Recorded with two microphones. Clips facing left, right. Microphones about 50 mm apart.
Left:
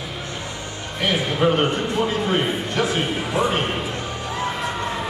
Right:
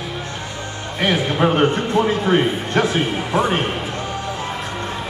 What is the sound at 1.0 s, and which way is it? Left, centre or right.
A man's voice, right.